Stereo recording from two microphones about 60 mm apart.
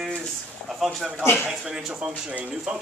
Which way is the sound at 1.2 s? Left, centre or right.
Left.